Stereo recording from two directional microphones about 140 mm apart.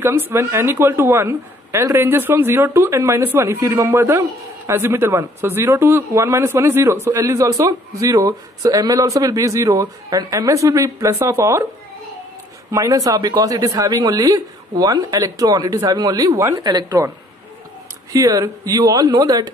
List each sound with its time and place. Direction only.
0.0 s speech: 15° right (ahead or behind)
12.7 s speech: 25° right (ahead or behind)
18.1 s speech: 25° right (ahead or behind)